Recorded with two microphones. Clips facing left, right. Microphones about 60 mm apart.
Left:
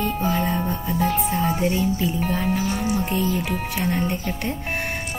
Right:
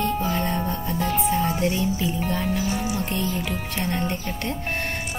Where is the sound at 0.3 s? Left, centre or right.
Centre.